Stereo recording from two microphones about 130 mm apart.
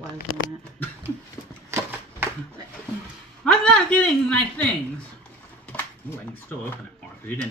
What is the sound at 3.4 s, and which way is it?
Speech, 5° left (ahead or behind).